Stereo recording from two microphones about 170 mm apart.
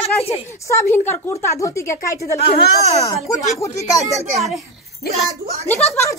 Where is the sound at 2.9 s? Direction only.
35° left (ahead or behind).